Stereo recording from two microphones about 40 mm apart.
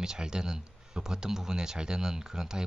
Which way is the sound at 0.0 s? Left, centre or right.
Centre.